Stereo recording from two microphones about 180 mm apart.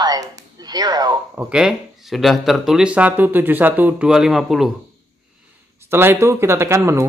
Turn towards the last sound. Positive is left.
turn(degrees=-15)  # may be behind; listen again after turning